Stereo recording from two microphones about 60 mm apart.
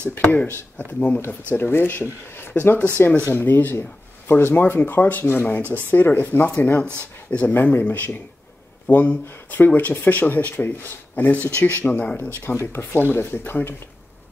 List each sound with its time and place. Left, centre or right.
0.1 s speech: left
0.8 s speech: left
1.5 s speech: left; by 12.2 s centre
12.2 s speech: left